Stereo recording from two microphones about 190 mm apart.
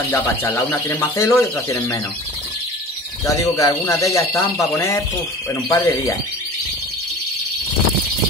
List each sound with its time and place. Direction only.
0.1 s speech: 10° left (ahead or behind)
3.3 s speech: 15° left (ahead or behind)